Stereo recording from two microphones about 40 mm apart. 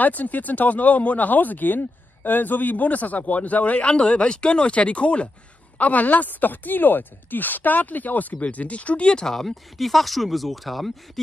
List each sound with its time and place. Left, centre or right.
0.0 s speech: left
3.8 s speech: left
9.2 s speech: centre